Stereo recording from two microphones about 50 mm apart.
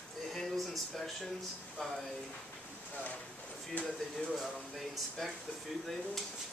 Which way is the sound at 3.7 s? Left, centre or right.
Left.